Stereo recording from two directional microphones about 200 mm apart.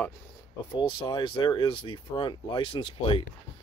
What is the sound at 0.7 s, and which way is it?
Speech, 20° left (ahead or behind).